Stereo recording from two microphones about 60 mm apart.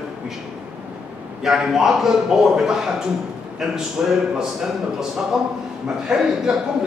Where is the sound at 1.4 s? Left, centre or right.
Centre.